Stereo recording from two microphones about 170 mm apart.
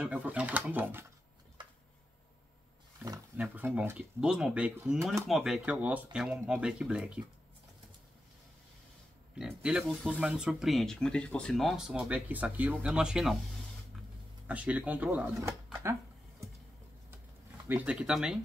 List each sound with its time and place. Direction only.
0.0 s speech: 10° right (ahead or behind)
3.3 s speech: 10° right (ahead or behind)
9.3 s speech: 5° right (ahead or behind)
14.5 s speech: 10° right (ahead or behind)
15.4 s a sound: 15° right (ahead or behind)
17.6 s speech: 10° right (ahead or behind)